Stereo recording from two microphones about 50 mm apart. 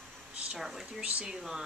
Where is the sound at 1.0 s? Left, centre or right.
Centre.